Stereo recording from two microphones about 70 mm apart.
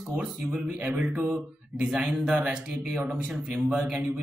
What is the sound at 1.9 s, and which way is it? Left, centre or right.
A man's voice, centre.